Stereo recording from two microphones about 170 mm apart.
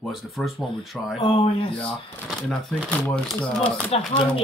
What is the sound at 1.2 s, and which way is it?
Speech, 35° left (ahead or behind).